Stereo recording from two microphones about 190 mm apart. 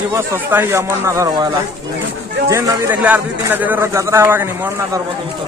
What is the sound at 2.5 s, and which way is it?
A man's voice, 15° right (ahead or behind).